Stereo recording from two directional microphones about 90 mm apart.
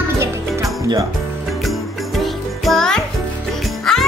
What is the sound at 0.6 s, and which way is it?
Music, 40° right (ahead or behind).